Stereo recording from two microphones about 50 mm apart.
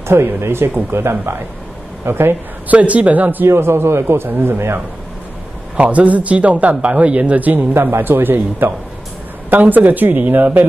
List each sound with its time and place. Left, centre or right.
0.1 s a man's voice: right
2.7 s speech: right
3.4 s a man's voice: right
4.3 s a man's voice: right
5.8 s a man's voice: right